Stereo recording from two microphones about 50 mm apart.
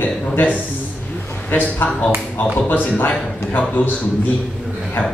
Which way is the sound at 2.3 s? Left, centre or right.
Left.